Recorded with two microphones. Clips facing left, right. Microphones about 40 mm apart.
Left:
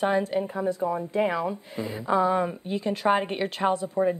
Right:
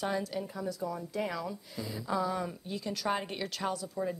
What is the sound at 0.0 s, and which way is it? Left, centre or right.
Speech, left.